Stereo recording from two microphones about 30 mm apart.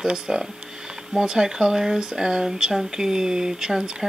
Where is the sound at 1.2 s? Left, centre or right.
Right.